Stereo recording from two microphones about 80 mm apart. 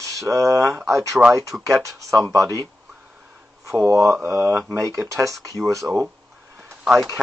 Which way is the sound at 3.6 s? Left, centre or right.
Right.